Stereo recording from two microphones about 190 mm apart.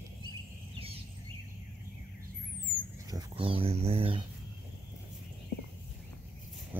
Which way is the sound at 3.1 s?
25° right (ahead or behind).